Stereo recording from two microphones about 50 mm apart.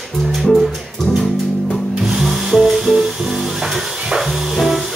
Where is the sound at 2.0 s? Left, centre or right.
Centre.